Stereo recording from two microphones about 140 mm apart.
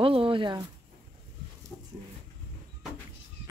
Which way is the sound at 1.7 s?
10° left (ahead or behind).